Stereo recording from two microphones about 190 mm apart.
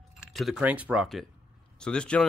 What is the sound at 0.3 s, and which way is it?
Speech, centre (ahead or behind).